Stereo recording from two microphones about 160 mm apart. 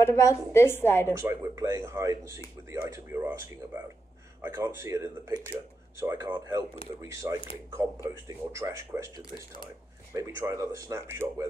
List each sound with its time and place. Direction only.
0.0 s a woman's voice: 20° left (ahead or behind)
1.1 s speech: 15° right (ahead or behind)
9.1 s speech: 30° left (ahead or behind)
10.1 s speech: 20° right (ahead or behind)